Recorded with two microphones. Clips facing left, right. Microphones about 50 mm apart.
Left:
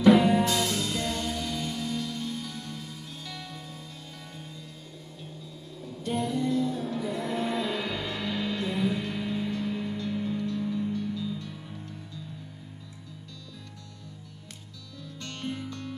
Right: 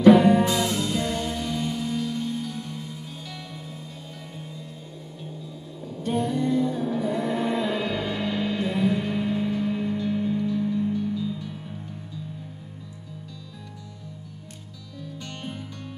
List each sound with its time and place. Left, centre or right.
0.1 s music: right
5.9 s music: right
7.0 s a sound: right
7.3 s music: centre
15.2 s music: centre